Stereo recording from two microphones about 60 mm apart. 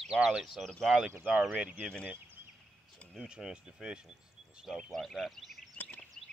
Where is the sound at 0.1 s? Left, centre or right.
Centre.